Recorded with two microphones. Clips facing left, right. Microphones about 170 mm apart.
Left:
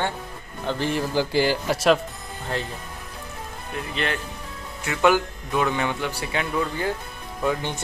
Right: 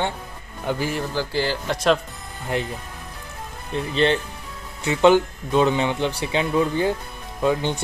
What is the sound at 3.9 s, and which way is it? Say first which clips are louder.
Speech: right 9 dB; 30° right (ahead or behind).